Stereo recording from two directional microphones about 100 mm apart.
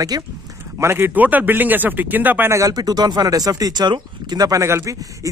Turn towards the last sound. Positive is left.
turn(degrees=-30)  # may be behind; listen again after turning